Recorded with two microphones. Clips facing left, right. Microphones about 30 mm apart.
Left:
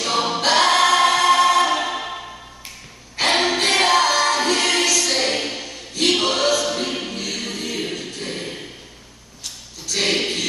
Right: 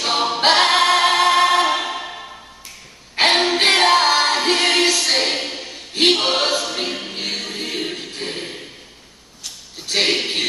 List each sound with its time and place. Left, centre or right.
0.0 s choir: right
3.2 s music: right
5.2 s a sound: right
5.6 s choir: right
6.7 s choir: centre
7.1 s music: right
9.8 s a sound: right